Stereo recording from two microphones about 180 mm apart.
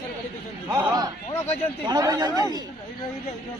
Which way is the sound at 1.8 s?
20° right (ahead or behind).